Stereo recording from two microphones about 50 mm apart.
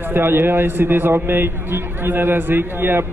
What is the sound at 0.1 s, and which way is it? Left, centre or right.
A man's voice, right.